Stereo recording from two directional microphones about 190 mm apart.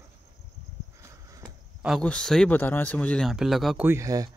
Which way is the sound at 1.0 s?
15° right (ahead or behind).